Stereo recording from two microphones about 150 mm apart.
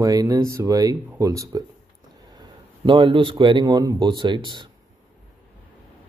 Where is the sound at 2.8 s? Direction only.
35° right (ahead or behind).